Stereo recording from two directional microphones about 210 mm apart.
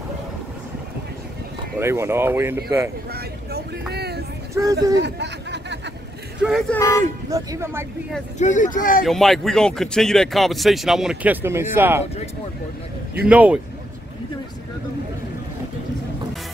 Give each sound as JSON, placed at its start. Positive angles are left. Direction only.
{"t": 1.8, "sound": "speech", "side_deg": -10}
{"t": 3.9, "sound": "a sound", "side_deg": -50}
{"t": 5.0, "sound": "speech", "side_deg": -55}
{"t": 6.4, "sound": "speech", "side_deg": 0}
{"t": 6.8, "sound": "speech", "side_deg": 15}
{"t": 7.2, "sound": "speech", "side_deg": -15}
{"t": 8.4, "sound": "speech", "side_deg": 35}
{"t": 9.0, "sound": "speech", "side_deg": 0}
{"t": 13.2, "sound": "speech", "side_deg": -5}